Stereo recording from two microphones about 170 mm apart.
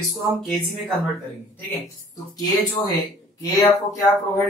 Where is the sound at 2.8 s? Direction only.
20° left (ahead or behind).